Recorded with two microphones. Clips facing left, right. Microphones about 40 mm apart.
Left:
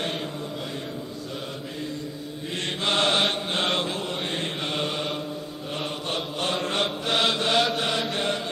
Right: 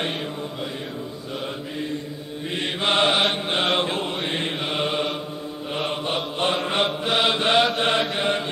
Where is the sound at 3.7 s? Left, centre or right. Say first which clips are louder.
Right 4 dB; right.